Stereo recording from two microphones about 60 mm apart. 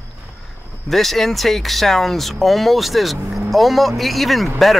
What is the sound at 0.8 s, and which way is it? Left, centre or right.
Speech, centre.